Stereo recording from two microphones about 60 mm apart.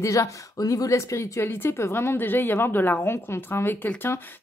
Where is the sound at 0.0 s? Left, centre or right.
Left.